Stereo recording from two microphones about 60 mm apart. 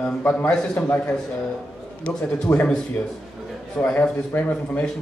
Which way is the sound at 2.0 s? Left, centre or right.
Centre.